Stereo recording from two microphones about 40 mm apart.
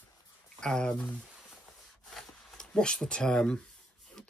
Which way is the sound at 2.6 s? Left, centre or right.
Centre.